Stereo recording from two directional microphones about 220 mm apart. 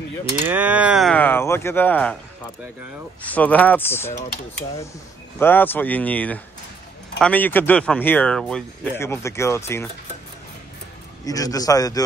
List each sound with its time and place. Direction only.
0.5 s speech: 5° right (ahead or behind)
3.2 s speech: 5° left (ahead or behind)
5.4 s speech: 10° left (ahead or behind)
11.2 s speech: 15° left (ahead or behind)